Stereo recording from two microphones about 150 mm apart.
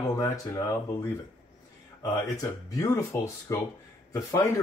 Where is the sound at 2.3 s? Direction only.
25° left (ahead or behind).